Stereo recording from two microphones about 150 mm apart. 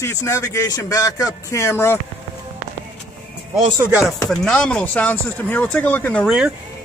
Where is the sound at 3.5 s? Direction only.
35° right (ahead or behind).